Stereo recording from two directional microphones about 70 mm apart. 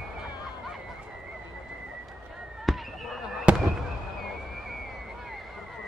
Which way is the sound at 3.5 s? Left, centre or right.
Centre.